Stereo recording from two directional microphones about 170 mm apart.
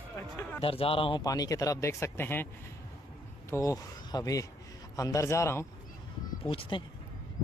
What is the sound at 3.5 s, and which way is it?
A man's voice, 20° left (ahead or behind).